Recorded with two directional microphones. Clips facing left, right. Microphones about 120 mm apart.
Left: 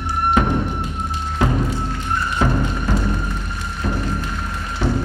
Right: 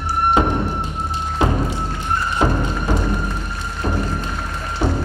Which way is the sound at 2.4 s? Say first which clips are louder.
Right 1 dB; 25° right (ahead or behind).